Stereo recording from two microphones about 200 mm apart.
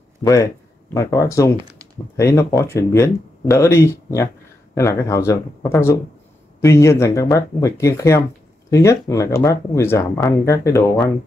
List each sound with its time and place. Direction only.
0.2 s speech: 15° left (ahead or behind)